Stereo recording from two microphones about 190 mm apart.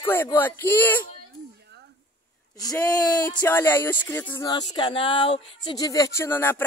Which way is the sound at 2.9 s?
20° left (ahead or behind).